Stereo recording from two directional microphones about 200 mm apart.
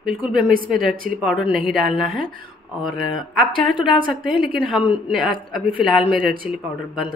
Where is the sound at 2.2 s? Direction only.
45° right (ahead or behind).